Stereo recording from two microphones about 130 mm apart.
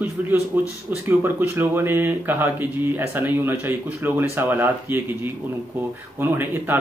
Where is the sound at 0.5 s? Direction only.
15° right (ahead or behind).